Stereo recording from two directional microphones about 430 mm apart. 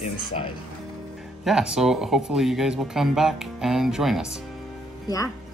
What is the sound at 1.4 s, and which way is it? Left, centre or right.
Speech, centre.